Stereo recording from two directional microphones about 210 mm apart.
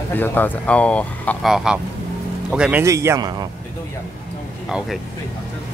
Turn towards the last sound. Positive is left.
turn(degrees=-5)  # may be behind; listen again after turning